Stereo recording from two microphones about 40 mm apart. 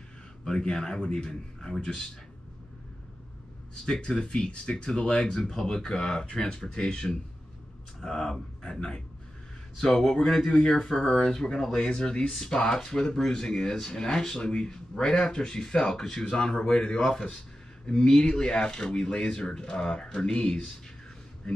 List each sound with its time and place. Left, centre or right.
0.5 s speech: centre
3.8 s speech: left
6.2 s speech: left
8.0 s speech: centre
17.1 s speech: centre